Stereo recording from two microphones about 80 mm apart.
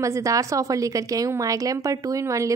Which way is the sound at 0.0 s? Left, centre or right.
Right.